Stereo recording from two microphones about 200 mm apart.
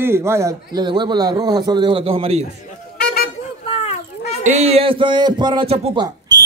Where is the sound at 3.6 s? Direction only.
30° left (ahead or behind).